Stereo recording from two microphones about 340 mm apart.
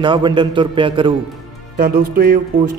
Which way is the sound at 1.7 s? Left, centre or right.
Right.